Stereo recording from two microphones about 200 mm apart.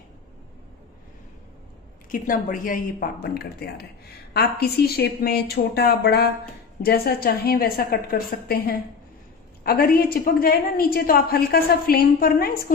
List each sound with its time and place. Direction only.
2.0 s a woman's voice: 40° left (ahead or behind)